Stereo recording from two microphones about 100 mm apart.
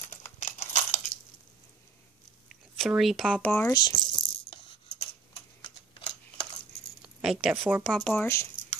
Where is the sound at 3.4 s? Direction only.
15° left (ahead or behind).